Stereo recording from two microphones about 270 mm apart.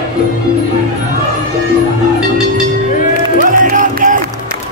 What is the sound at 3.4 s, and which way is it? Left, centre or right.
Music, right.